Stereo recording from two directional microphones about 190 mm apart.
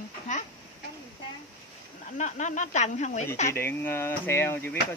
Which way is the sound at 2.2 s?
40° left (ahead or behind).